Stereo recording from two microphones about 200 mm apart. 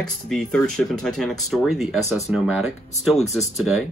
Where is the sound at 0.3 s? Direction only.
5° left (ahead or behind).